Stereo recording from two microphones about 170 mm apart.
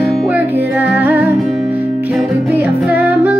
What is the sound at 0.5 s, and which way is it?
Music, 10° right (ahead or behind).